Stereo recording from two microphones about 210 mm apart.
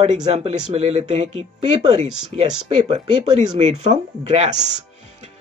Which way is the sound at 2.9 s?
30° right (ahead or behind).